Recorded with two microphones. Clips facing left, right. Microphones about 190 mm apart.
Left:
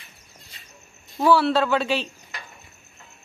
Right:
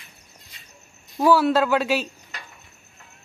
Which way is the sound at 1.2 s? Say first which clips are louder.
Right 1 dB; 5° right (ahead or behind).